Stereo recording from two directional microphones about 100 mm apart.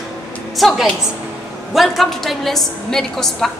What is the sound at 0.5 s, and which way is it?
A woman's voice, centre (ahead or behind).